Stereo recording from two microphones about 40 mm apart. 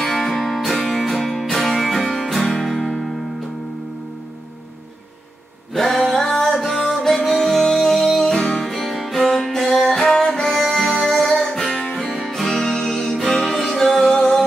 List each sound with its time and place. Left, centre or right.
0.0 s music: centre
5.7 s music: centre
8.3 s music: centre
8.6 s music: centre